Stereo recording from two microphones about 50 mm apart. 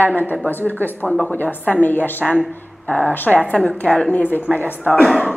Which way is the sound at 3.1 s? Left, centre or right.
Left.